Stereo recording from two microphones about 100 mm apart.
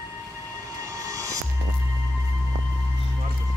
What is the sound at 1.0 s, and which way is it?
Music, 35° right (ahead or behind).